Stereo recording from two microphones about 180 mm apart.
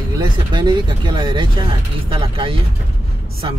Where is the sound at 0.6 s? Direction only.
25° right (ahead or behind).